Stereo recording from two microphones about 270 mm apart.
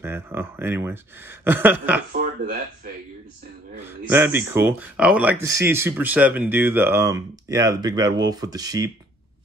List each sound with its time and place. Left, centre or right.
0.0 s speech: centre
2.1 s speech: right
3.8 s speech: centre